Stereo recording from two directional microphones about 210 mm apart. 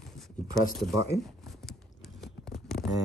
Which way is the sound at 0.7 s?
Centre (ahead or behind).